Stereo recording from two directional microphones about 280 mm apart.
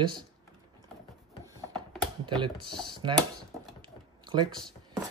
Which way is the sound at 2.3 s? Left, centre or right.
Centre.